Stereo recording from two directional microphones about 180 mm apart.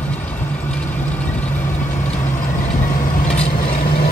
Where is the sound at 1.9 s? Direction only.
45° left (ahead or behind).